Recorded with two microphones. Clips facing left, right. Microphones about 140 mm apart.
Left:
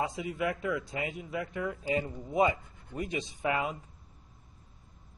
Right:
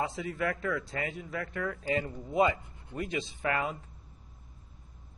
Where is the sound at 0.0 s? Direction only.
15° left (ahead or behind).